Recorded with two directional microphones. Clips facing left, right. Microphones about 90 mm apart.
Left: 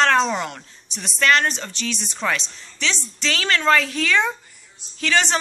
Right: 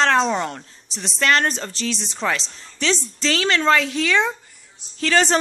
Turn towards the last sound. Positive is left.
turn(degrees=-40)  # may be behind; listen again after turning